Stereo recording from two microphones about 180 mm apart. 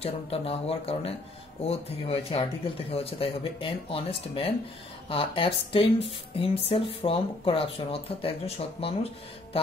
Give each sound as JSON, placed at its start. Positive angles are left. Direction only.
{"t": 0.0, "sound": "speech", "side_deg": 35}